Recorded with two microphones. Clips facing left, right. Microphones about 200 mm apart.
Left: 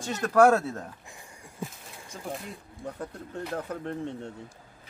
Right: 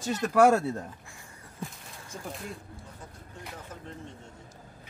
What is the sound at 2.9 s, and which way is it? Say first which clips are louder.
Speech: left 11 dB; 65° left (ahead or behind).